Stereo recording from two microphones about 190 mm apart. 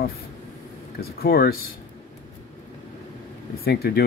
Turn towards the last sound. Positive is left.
turn(degrees=55)  # may be behind; listen again after turning